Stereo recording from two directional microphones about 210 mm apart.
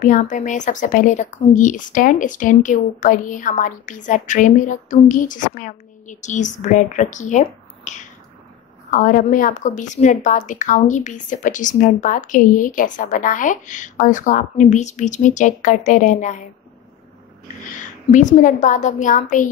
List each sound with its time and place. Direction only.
0.0 s a woman's voice: 35° left (ahead or behind)
18.1 s a woman's voice: 35° left (ahead or behind)